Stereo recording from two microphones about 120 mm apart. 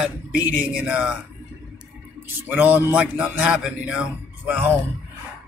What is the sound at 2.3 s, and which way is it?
A man's voice, 15° right (ahead or behind).